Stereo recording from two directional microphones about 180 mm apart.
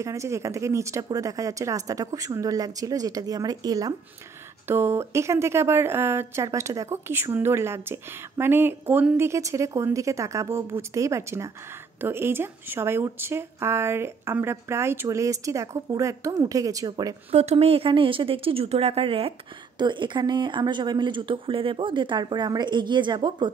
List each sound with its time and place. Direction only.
0.0 s a woman's voice: 15° right (ahead or behind)
17.3 s speech: 35° right (ahead or behind)